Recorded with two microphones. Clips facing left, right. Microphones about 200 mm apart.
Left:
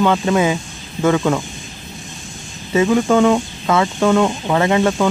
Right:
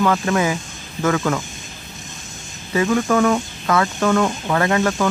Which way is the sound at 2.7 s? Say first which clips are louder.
Left 4 dB; 20° left (ahead or behind).